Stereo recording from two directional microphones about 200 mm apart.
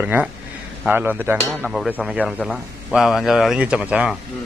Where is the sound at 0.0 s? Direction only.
10° right (ahead or behind).